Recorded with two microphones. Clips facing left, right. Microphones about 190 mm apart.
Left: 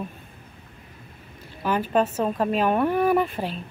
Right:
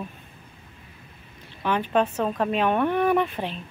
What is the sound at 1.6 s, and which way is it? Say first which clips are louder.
A woman's voice: left 1 dB; 5° left (ahead or behind).